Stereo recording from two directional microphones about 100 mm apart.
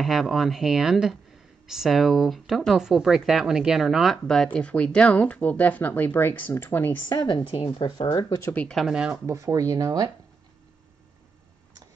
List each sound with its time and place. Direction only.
0.0 s speech: centre (ahead or behind); by 7.0 s 20° left (ahead or behind)
7.1 s a woman's voice: 45° left (ahead or behind)
8.7 s speech: 5° right (ahead or behind)
9.1 s speech: 30° right (ahead or behind)